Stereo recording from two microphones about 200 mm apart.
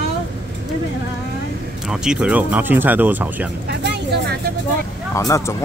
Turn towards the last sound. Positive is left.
turn(degrees=15)  # may be behind; listen again after turning